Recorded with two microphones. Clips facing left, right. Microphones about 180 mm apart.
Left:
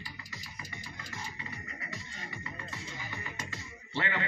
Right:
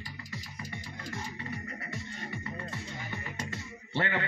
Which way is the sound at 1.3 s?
55° right (ahead or behind).